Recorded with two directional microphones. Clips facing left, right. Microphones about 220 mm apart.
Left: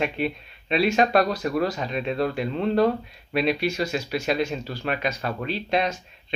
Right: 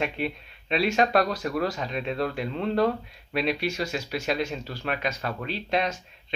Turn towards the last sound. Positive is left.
turn(degrees=10)  # may be behind; listen again after turning